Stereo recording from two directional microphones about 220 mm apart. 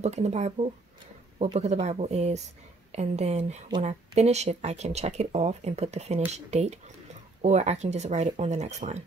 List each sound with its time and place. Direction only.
0.0 s a woman's voice: 30° right (ahead or behind)